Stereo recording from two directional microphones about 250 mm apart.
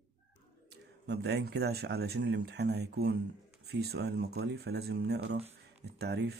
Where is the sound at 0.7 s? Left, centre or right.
Right.